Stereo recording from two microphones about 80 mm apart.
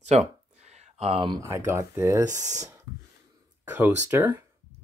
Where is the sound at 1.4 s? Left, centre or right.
Right.